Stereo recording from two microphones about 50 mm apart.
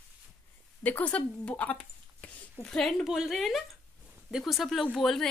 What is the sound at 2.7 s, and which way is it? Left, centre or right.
Speech, centre.